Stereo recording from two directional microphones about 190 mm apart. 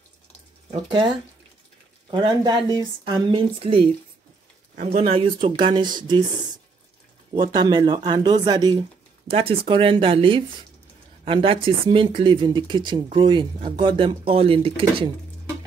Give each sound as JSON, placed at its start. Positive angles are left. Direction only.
{"t": 0.7, "sound": "speech", "side_deg": -30}
{"t": 2.0, "sound": "speech", "side_deg": -25}